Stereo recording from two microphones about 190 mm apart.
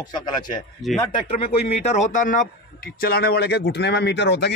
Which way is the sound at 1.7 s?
35° left (ahead or behind).